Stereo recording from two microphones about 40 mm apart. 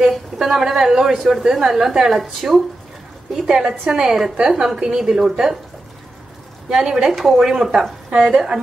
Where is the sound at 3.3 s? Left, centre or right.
Centre.